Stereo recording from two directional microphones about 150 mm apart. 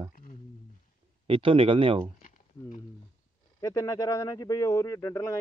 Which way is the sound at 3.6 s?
25° left (ahead or behind).